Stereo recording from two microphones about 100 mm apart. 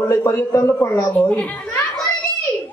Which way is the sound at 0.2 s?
35° left (ahead or behind).